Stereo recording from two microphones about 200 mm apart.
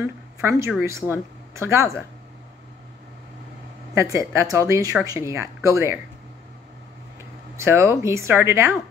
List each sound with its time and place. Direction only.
0.0 s a woman's voice: 10° right (ahead or behind)
3.9 s speech: 15° right (ahead or behind)
7.5 s speech: 10° right (ahead or behind)